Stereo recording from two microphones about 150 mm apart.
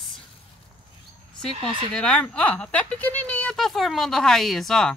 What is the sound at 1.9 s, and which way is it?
Speech, 5° left (ahead or behind).